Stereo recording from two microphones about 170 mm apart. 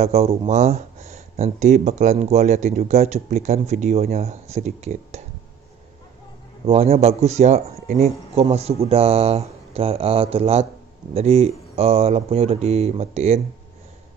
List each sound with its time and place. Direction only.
0.0 s speech: 40° right (ahead or behind)
6.6 s speech: 35° right (ahead or behind)